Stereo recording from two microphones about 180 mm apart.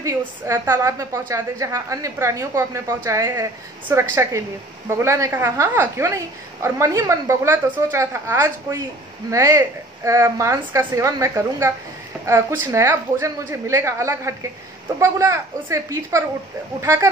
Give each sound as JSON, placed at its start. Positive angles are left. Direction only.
{"t": 0.0, "sound": "a woman's voice", "side_deg": -15}